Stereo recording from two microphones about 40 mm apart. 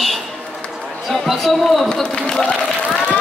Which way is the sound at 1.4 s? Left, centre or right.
Centre.